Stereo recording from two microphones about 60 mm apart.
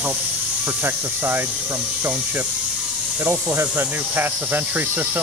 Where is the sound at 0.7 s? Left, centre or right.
Right.